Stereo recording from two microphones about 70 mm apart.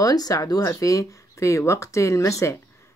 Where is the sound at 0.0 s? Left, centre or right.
Left.